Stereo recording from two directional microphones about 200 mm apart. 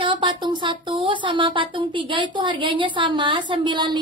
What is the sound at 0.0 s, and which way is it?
Speech, 25° right (ahead or behind).